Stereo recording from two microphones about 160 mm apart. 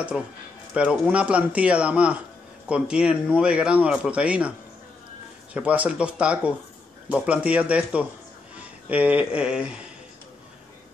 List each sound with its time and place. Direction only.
0.1 s speech: 5° right (ahead or behind)